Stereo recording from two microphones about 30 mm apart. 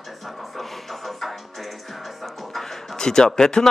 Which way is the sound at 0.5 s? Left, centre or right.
Centre.